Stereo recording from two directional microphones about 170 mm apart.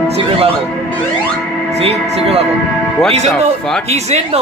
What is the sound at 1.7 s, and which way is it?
Speech, 40° right (ahead or behind).